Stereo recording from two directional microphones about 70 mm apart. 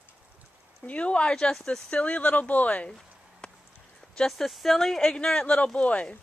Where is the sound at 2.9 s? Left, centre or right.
Centre.